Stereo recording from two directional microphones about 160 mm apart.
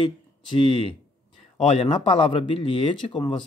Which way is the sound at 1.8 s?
35° left (ahead or behind).